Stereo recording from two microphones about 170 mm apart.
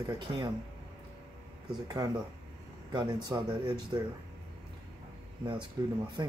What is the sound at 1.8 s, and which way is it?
Speech, 20° right (ahead or behind).